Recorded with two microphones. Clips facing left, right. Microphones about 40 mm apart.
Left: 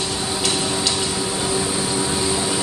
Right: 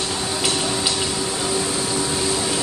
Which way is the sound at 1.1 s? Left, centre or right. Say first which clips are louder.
Left 1 dB; centre.